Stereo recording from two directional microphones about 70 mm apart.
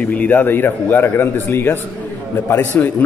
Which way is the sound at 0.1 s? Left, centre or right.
Left.